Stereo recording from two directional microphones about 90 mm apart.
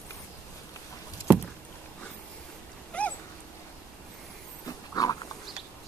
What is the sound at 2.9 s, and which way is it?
Dog, 15° left (ahead or behind).